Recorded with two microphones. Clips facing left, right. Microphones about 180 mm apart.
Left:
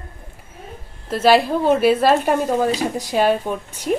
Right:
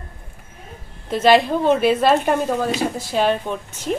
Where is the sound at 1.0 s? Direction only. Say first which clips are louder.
Even; 5° left (ahead or behind).